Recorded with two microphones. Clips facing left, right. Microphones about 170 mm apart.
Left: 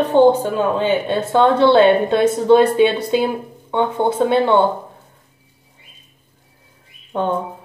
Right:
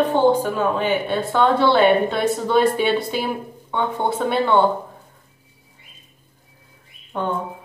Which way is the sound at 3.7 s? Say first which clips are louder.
Left 4 dB; 20° left (ahead or behind).